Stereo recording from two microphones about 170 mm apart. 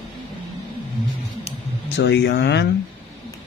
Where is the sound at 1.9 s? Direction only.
90° left.